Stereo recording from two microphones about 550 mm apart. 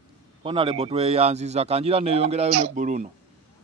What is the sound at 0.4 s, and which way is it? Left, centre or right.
A man's voice, centre.